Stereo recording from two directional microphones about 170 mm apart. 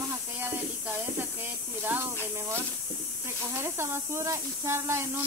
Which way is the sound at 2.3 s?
15° right (ahead or behind).